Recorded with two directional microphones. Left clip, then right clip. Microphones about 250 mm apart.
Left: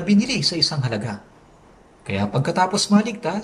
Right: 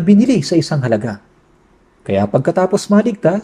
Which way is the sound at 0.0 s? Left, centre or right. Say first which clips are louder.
Right 7 dB; right.